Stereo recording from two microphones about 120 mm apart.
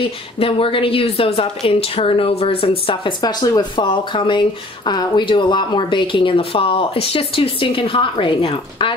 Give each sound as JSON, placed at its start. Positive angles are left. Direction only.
{"t": 0.0, "sound": "speech", "side_deg": 50}
{"t": 3.8, "sound": "speech", "side_deg": 45}